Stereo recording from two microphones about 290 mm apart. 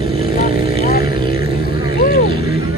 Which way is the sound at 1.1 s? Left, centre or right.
Centre.